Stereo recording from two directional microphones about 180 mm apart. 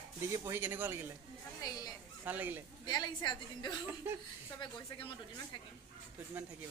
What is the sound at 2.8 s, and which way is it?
A woman's voice, 25° left (ahead or behind).